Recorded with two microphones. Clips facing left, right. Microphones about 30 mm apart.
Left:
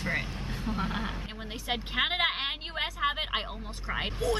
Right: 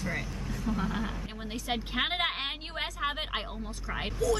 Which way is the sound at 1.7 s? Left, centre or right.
Centre.